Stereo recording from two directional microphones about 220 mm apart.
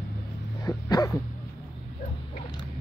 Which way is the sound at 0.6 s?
15° left (ahead or behind).